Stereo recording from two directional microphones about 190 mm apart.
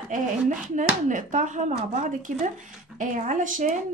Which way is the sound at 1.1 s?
40° right (ahead or behind).